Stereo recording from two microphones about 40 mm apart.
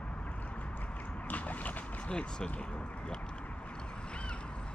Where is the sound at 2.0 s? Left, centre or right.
Left.